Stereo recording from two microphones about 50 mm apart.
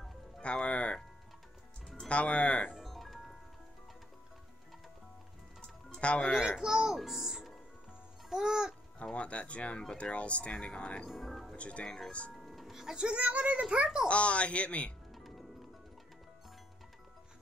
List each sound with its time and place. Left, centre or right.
0.4 s music: left
2.0 s speech: left
2.8 s music: centre
5.6 s music: left
6.6 s a child's voice: centre
9.0 s speech: left
11.1 s speech: centre
11.5 s speech: left
12.4 s a child's voice: centre; by 13.8 s right
14.0 s speech: left
15.1 s music: centre